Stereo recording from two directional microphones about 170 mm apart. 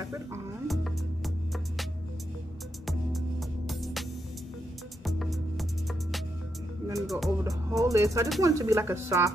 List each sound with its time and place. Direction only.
0.0 s music: 20° right (ahead or behind)
0.7 s music: centre (ahead or behind)
2.9 s music: centre (ahead or behind)
5.0 s music: centre (ahead or behind)
7.0 s music: centre (ahead or behind)
7.7 s speech: 20° right (ahead or behind)